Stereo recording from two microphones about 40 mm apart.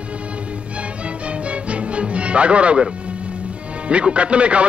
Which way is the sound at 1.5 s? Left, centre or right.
Right.